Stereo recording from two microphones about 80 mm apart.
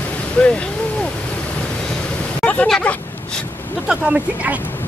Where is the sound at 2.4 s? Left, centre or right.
Centre.